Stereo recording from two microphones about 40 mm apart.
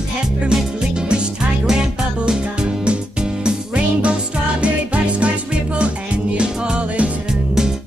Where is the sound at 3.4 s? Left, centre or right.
Right.